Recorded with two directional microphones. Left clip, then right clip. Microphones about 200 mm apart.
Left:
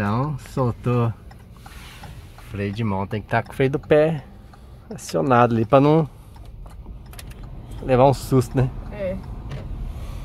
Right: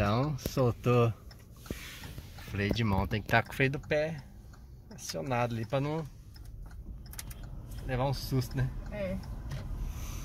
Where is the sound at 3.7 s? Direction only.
30° left (ahead or behind).